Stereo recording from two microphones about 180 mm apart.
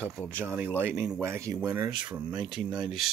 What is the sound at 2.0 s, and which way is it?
Speech, 5° right (ahead or behind).